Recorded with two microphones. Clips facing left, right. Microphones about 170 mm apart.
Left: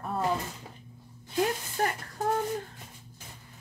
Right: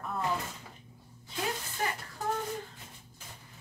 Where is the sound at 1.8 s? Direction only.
45° left (ahead or behind).